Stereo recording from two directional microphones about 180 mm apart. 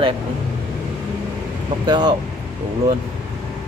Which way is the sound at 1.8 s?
25° right (ahead or behind).